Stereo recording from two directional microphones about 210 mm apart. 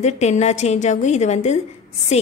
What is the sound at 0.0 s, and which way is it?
A woman's voice, 30° left (ahead or behind).